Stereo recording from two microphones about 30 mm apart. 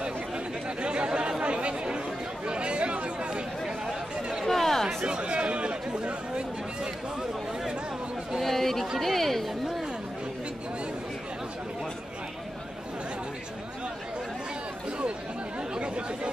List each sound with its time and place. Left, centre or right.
0.8 s chatter: right
3.6 s chatter: centre
4.5 s a sound: centre
5.0 s chatter: right
8.4 s chatter: centre